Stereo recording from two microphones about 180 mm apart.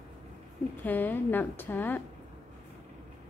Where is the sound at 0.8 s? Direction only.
10° left (ahead or behind).